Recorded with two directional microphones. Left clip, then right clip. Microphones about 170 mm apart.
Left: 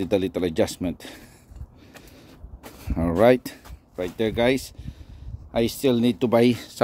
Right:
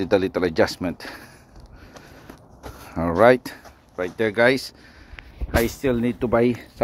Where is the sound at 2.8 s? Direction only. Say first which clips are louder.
Right 3 dB; 40° left (ahead or behind).